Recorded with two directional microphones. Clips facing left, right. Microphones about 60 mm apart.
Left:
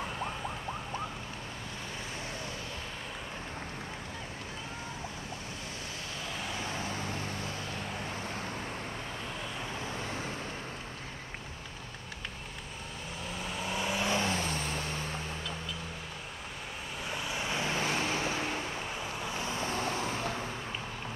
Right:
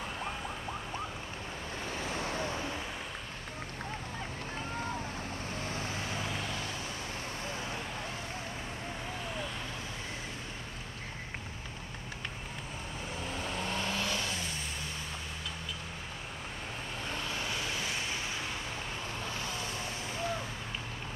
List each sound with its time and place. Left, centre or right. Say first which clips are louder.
13.4 s vehicle: left 1 dB; centre
14.1 s vehicle: left 5 dB; left
14.4 s vehicle: left 5 dB; left
17.1 s vehicle: left 2 dB; centre
17.5 s vehicle: left 4 dB; left
17.8 s vehicle: left 5 dB; left
19.1 s vehicle: left 4 dB; centre
19.8 s vehicle: left 4 dB; left